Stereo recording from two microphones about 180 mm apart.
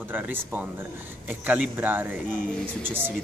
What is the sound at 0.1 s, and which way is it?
Speech, 10° right (ahead or behind).